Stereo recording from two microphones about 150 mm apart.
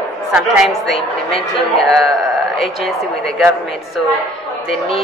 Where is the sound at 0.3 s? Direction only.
5° right (ahead or behind).